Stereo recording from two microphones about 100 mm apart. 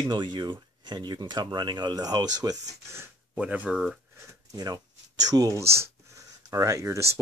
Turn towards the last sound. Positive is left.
turn(degrees=-30)  # may be behind; listen again after turning